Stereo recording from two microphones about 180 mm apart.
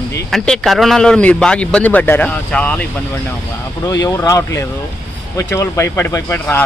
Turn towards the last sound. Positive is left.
turn(degrees=10)  # may be behind; listen again after turning